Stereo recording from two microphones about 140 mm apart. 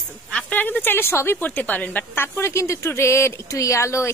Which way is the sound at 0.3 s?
10° left (ahead or behind).